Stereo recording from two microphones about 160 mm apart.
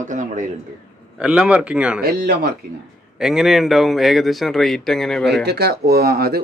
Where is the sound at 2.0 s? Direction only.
85° right.